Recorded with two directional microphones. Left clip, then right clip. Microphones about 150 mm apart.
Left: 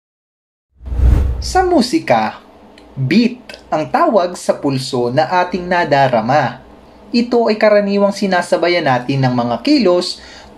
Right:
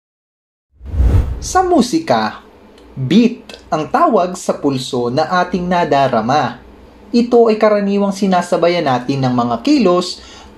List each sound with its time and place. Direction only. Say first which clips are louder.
1.5 s speech: even; 35° right (ahead or behind)